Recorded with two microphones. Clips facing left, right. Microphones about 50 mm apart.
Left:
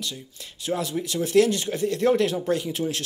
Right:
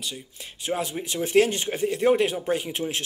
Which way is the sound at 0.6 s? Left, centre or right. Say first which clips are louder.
Left 1 dB; right.